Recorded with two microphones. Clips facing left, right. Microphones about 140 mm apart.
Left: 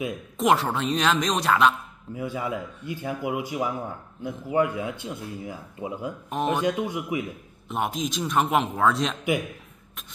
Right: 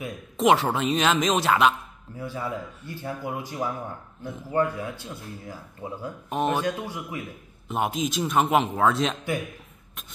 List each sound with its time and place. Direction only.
0.4 s a man's voice: centre (ahead or behind)
2.1 s speech: 15° left (ahead or behind)
6.3 s a man's voice: centre (ahead or behind)
6.6 s speech: 15° left (ahead or behind)
7.6 s a man's voice: centre (ahead or behind)